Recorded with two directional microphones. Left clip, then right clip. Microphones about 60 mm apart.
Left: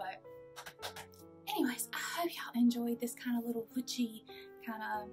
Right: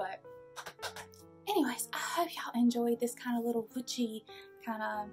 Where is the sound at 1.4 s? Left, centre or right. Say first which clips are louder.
Right 4 dB; right.